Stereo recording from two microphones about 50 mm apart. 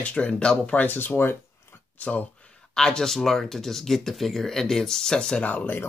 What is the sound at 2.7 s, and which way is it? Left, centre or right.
Speech, centre.